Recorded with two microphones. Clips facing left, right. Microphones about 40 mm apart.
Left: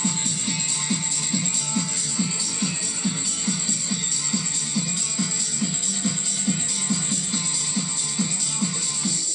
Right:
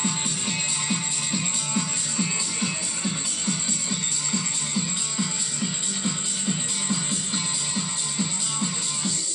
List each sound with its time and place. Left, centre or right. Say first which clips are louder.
0.0 s music: even; right
3.0 s music: left 1 dB; centre